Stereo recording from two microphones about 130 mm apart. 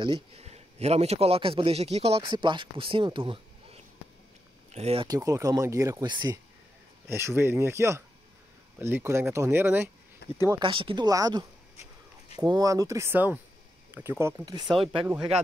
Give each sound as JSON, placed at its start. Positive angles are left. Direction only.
{"t": 0.0, "sound": "speech", "side_deg": -40}
{"t": 0.4, "sound": "a man's voice", "side_deg": -55}
{"t": 4.7, "sound": "speech", "side_deg": -55}
{"t": 5.0, "sound": "speech", "side_deg": -30}
{"t": 7.1, "sound": "speech", "side_deg": -20}
{"t": 10.6, "sound": "speech", "side_deg": -45}
{"t": 11.1, "sound": "speech", "side_deg": -30}
{"t": 14.8, "sound": "speech", "side_deg": -45}